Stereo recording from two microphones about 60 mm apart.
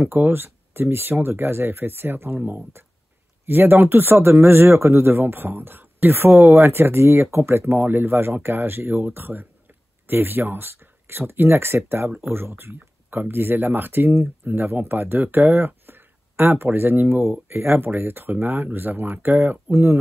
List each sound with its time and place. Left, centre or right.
0.0 s speech: right